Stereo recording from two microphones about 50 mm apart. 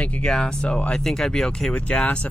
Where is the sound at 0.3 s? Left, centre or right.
Centre.